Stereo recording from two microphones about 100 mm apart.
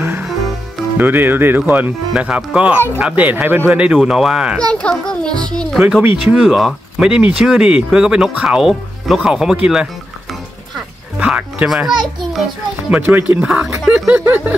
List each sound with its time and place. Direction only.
0.9 s speech: 20° right (ahead or behind)
3.8 s speech: 10° right (ahead or behind)
4.6 s a child's voice: 10° left (ahead or behind)
5.8 s speech: 5° right (ahead or behind)
11.1 s speech: 10° right (ahead or behind)
12.9 s speech: 15° right (ahead or behind)
13.8 s speech: 5° right (ahead or behind)
14.2 s a sound: 20° right (ahead or behind)